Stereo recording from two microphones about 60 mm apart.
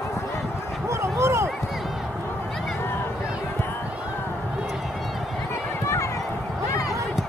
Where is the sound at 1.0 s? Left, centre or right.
Right.